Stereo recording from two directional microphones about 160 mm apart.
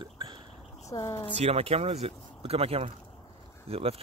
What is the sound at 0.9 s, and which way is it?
Speech, 20° left (ahead or behind).